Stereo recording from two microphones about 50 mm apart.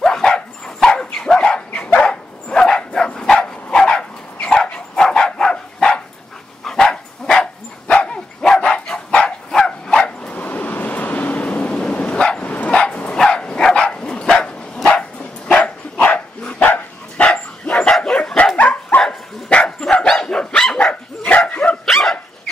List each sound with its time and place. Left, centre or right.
0.0 s dog: centre
7.9 s dog: left
10.3 s vehicle: left
12.4 s dog: left
18.9 s dog: left
19.5 s dog: left
19.9 s dog: centre
21.5 s dog: left
21.8 s dog: centre